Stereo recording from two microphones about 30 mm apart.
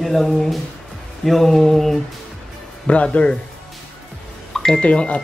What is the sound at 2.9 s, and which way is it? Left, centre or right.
Speech, left.